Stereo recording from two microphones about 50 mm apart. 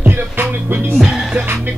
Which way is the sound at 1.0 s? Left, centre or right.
Centre.